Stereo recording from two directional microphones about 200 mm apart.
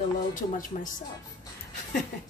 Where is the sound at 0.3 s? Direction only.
40° left (ahead or behind).